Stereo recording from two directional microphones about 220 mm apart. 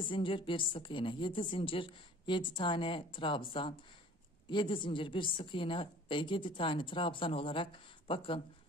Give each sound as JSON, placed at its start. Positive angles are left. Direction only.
{"t": 0.0, "sound": "a woman's voice", "side_deg": 25}